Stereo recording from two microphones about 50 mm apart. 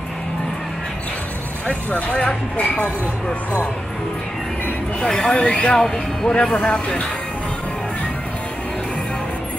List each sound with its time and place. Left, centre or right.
1.7 s speech: left
5.0 s speech: centre
5.8 s speech: centre
6.3 s speech: left